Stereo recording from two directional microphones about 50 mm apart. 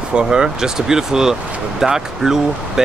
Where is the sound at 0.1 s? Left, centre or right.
Centre.